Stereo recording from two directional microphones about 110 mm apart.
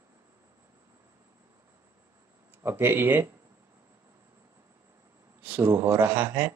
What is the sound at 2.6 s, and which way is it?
Speech, 20° right (ahead or behind).